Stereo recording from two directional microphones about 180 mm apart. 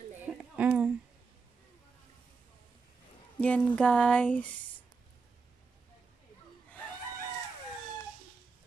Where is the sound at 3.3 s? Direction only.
5° left (ahead or behind).